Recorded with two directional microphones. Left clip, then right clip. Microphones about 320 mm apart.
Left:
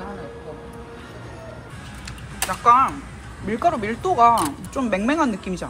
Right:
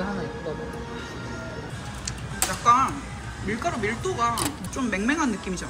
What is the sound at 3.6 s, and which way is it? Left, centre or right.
Speech, centre.